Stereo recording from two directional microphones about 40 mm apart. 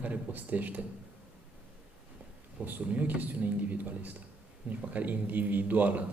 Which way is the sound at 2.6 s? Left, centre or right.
Right.